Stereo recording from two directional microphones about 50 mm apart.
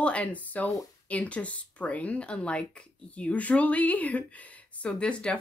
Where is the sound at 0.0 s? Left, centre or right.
Left.